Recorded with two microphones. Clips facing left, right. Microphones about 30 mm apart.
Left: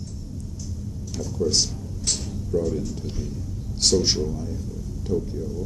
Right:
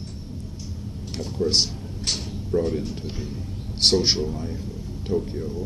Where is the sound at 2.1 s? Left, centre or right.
Right.